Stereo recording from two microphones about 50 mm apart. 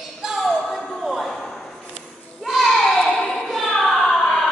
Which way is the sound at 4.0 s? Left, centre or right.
Left.